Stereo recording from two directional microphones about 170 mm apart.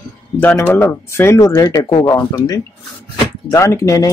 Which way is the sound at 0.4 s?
10° left (ahead or behind).